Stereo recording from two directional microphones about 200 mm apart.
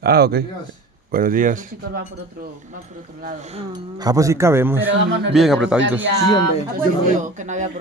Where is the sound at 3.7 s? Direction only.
20° right (ahead or behind).